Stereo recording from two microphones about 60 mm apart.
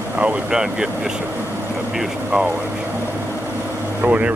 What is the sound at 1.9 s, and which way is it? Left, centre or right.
Speech, centre.